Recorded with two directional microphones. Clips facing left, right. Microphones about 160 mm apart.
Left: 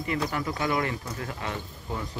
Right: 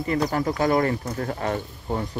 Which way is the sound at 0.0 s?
40° right (ahead or behind).